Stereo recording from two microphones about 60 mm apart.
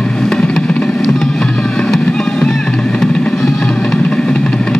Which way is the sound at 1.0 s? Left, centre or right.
Centre.